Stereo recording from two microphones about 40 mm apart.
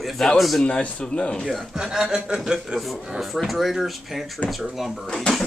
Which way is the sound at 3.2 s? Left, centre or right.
Centre.